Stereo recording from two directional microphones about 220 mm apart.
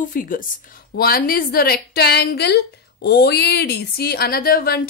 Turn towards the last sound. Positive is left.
turn(degrees=45)  # may be behind; listen again after turning